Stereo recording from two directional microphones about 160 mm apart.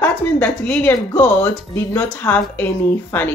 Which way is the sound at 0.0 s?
10° left (ahead or behind).